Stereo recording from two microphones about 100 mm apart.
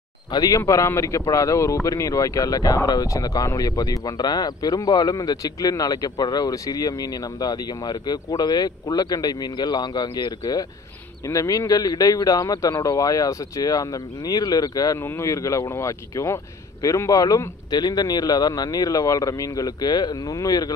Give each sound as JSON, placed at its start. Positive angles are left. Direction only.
{"t": 0.3, "sound": "speech", "side_deg": 35}
{"t": 15.0, "sound": "speech", "side_deg": 25}